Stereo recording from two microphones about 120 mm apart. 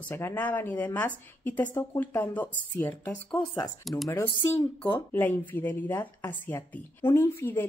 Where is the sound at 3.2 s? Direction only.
40° left (ahead or behind).